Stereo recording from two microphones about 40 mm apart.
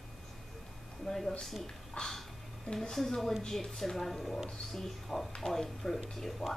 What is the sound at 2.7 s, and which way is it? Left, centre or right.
Speech, centre.